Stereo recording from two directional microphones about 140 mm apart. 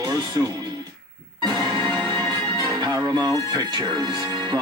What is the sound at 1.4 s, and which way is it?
Music, 30° right (ahead or behind).